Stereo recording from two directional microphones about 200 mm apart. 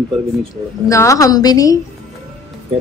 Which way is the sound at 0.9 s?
15° left (ahead or behind).